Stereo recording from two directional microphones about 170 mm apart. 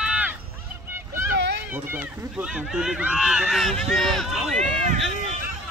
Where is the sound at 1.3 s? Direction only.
85° right.